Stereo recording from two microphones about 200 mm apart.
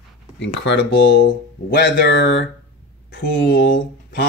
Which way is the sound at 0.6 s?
60° left (ahead or behind).